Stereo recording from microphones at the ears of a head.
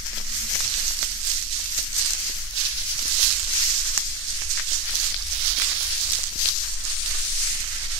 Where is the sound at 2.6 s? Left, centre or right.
Right.